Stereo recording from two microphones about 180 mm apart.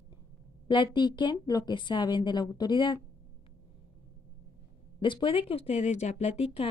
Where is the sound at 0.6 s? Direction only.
25° left (ahead or behind).